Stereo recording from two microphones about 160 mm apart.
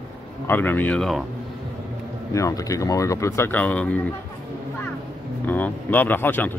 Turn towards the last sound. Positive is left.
turn(degrees=10)  # may be behind; listen again after turning